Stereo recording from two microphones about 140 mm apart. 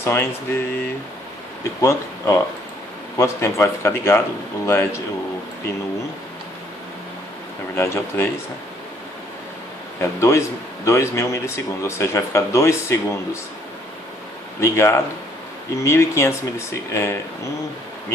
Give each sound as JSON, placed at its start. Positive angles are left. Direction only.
{"t": 0.0, "sound": "speech", "side_deg": 15}
{"t": 1.8, "sound": "speech", "side_deg": 20}
{"t": 7.7, "sound": "speech", "side_deg": 15}
{"t": 9.9, "sound": "speech", "side_deg": 20}
{"t": 14.6, "sound": "speech", "side_deg": 15}